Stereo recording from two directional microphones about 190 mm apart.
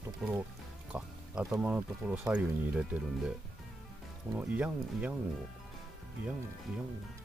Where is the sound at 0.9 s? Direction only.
5° right (ahead or behind).